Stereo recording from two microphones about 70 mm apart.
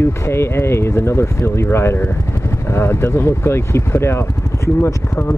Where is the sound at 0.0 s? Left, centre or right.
Left.